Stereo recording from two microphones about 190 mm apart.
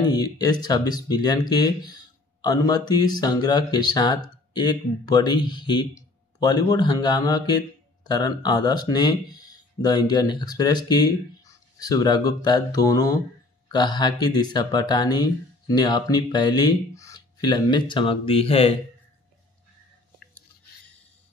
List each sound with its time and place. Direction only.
0.1 s speech: 20° left (ahead or behind)